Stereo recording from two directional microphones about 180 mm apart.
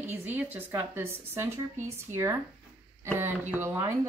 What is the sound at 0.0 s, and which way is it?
Speech, 10° right (ahead or behind).